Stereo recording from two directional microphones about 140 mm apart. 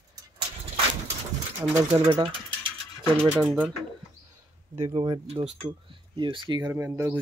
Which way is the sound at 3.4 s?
5° right (ahead or behind).